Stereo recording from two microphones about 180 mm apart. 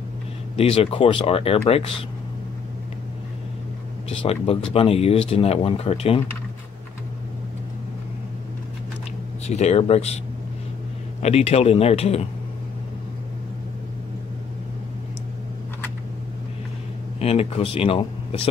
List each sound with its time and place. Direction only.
0.6 s speech: 35° left (ahead or behind)
4.2 s speech: 35° left (ahead or behind)
9.5 s speech: 35° left (ahead or behind)
11.2 s speech: 35° left (ahead or behind)
17.2 s speech: 35° left (ahead or behind)